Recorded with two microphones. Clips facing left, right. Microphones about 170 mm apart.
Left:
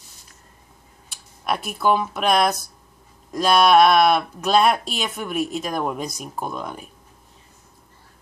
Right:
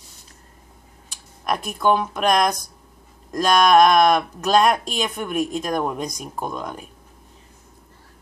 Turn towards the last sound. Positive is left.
turn(degrees=5)  # may be behind; listen again after turning